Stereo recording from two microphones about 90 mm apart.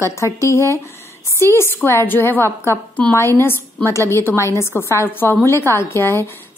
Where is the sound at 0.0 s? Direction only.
35° left (ahead or behind).